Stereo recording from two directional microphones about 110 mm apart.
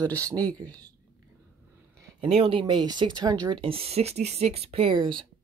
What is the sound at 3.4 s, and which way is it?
Speech, 55° right (ahead or behind).